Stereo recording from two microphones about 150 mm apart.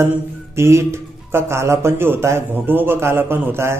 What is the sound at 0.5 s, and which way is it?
Speech, 20° right (ahead or behind).